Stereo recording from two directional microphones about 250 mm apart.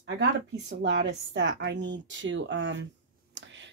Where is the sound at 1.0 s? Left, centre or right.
Right.